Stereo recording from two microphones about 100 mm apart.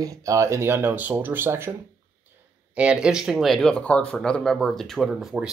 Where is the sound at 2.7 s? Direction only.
10° right (ahead or behind).